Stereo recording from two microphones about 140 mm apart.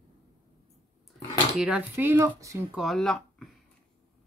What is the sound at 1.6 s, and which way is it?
Speech, 10° right (ahead or behind).